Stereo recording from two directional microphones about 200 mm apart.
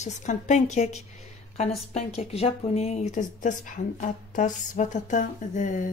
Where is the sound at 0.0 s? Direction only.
35° left (ahead or behind).